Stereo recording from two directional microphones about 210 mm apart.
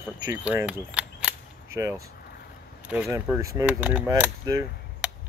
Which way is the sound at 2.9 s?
10° right (ahead or behind).